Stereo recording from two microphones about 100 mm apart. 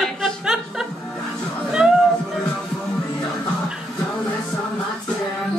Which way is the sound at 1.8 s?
5° right (ahead or behind).